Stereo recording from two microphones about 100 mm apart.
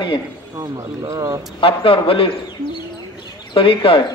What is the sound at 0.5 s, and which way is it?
Speech, 35° right (ahead or behind).